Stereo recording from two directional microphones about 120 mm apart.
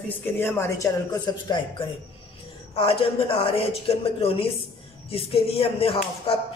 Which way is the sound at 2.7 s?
50° left (ahead or behind).